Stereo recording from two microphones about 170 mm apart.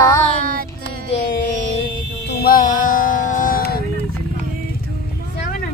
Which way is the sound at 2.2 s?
65° left (ahead or behind).